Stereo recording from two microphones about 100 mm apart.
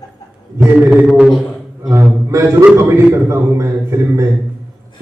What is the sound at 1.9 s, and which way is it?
A man's voice, 30° right (ahead or behind).